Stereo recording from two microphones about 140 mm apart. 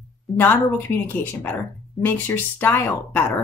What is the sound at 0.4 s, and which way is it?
Speech, 15° left (ahead or behind).